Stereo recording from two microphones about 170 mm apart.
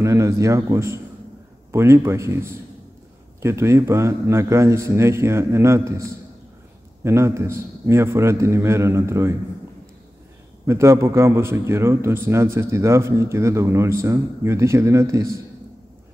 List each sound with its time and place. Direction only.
0.0 s a man's voice: 15° right (ahead or behind)
10.7 s a man's voice: 15° right (ahead or behind)